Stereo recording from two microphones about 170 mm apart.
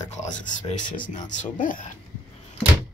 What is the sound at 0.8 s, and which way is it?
Speech, 50° left (ahead or behind).